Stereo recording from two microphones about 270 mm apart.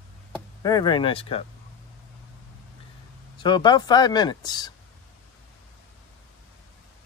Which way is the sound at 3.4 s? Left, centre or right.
Centre.